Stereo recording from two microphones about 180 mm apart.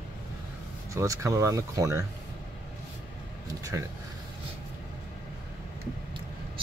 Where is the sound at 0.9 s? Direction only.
15° right (ahead or behind).